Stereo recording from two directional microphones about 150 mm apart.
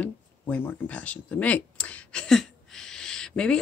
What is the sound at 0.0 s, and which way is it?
Speech, 10° left (ahead or behind).